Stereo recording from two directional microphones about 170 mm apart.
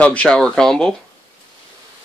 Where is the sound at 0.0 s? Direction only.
5° left (ahead or behind).